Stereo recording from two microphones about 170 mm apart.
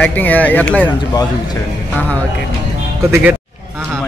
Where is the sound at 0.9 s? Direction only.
25° left (ahead or behind).